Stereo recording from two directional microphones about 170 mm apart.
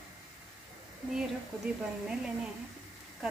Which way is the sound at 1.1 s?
5° right (ahead or behind).